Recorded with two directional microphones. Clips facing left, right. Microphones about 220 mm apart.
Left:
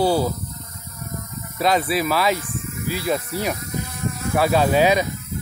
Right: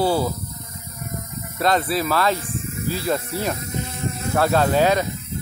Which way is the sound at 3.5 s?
25° right (ahead or behind).